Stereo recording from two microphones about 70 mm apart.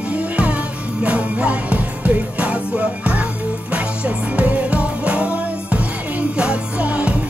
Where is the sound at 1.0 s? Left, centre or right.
Centre.